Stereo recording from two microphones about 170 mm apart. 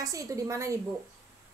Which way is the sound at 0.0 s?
20° right (ahead or behind).